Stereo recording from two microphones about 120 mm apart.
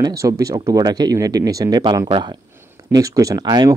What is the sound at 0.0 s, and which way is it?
A man's voice, 25° right (ahead or behind).